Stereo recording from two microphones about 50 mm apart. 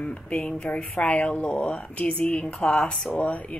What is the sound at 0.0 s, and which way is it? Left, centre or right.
Speech, left.